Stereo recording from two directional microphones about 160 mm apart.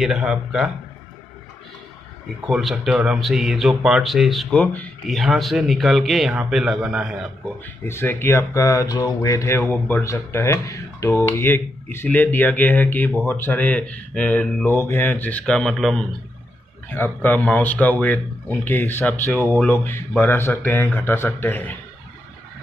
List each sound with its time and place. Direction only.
0.0 s speech: 5° right (ahead or behind)
2.4 s speech: centre (ahead or behind)
7.6 s speech: 15° left (ahead or behind)
16.9 s speech: 10° left (ahead or behind)